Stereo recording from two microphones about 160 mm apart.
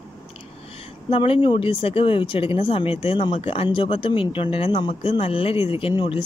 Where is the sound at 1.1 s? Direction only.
35° left (ahead or behind).